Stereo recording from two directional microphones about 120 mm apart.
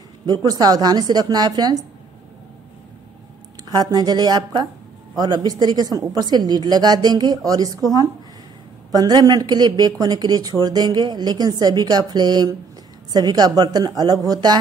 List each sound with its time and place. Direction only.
0.3 s speech: 35° right (ahead or behind)
3.6 s speech: 35° right (ahead or behind)